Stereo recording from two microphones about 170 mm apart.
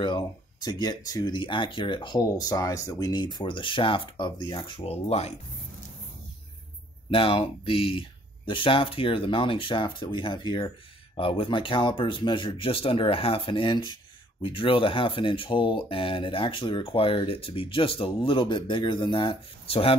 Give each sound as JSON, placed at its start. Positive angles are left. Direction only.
{"t": 0.0, "sound": "speech", "side_deg": 25}
{"t": 7.1, "sound": "speech", "side_deg": 35}